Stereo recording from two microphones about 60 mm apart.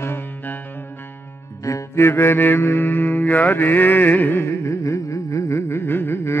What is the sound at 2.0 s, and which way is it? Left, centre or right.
Mantra, left.